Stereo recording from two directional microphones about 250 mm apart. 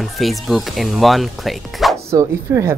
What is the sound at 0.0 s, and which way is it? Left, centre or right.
Speech, centre.